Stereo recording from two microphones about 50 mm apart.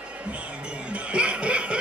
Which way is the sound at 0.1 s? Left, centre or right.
Right.